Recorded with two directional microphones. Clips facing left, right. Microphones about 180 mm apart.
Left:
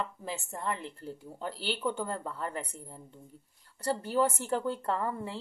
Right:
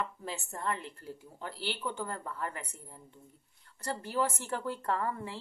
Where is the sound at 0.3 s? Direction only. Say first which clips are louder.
Left 2 dB; 20° left (ahead or behind).